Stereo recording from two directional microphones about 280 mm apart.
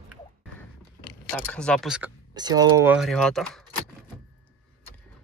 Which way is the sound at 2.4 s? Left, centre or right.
Centre.